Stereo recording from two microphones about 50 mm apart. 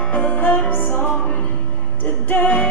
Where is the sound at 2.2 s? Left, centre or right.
Left.